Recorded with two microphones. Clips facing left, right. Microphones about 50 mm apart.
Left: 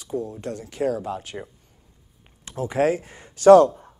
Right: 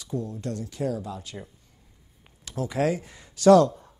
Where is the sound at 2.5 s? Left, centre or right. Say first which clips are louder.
Left 4 dB; left.